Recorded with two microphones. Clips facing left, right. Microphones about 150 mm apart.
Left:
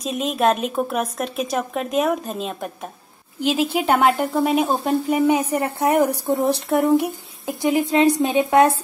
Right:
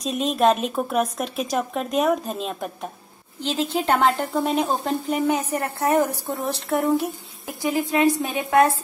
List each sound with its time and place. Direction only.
0.0 s a woman's voice: centre (ahead or behind); by 8.7 s 20° left (ahead or behind)